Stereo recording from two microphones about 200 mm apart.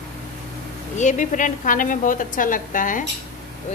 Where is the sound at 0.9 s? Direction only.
40° left (ahead or behind).